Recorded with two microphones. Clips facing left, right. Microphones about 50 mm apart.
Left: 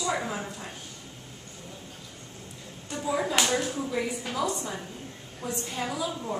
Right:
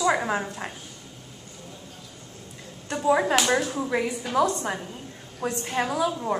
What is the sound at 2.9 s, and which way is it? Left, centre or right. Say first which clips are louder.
Speech: right 7 dB; right.